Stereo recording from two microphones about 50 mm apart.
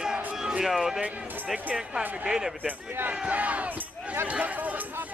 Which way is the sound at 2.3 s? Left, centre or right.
Centre.